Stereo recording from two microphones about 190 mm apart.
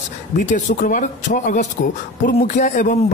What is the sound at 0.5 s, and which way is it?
Speech, 45° left (ahead or behind).